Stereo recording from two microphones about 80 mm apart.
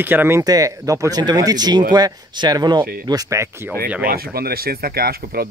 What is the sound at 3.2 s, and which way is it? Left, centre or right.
Speech, right.